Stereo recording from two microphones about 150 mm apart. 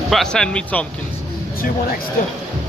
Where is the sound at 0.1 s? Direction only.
5° left (ahead or behind).